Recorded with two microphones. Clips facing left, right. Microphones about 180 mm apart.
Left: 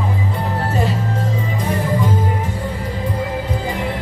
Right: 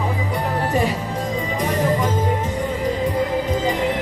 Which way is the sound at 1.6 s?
15° right (ahead or behind).